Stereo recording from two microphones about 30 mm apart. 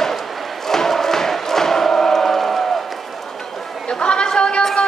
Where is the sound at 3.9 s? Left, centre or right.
Left.